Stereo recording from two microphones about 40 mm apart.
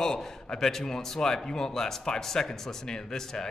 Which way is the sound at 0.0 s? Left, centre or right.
Centre.